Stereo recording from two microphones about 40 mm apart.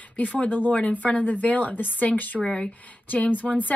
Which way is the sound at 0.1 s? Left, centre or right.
Left.